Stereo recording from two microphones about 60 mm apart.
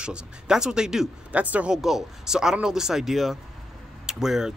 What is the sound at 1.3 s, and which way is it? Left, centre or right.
Speech, right.